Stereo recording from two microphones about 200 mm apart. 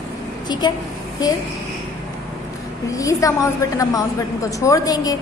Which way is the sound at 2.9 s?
15° left (ahead or behind).